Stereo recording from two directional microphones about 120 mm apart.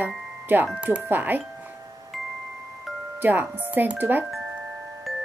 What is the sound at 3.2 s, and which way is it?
Speech, 15° right (ahead or behind).